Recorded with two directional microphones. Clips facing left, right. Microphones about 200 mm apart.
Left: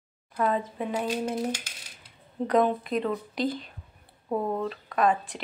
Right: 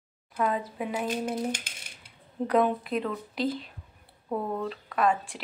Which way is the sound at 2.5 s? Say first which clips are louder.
Left 1 dB; 5° right (ahead or behind).